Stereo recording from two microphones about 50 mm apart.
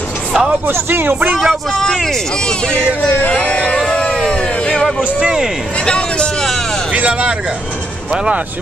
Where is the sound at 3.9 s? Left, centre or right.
Left.